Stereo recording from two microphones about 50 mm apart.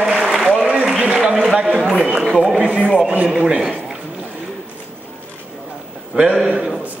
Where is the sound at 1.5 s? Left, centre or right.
Right.